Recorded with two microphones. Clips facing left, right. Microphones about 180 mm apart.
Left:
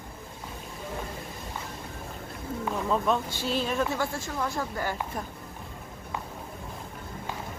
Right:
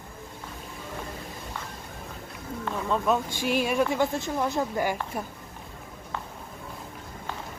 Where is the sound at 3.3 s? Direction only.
15° right (ahead or behind).